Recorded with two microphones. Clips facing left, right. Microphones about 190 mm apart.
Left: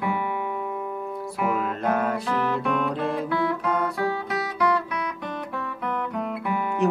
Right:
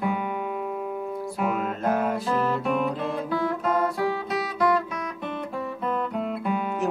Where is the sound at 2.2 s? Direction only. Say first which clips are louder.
Right 1 dB; centre (ahead or behind).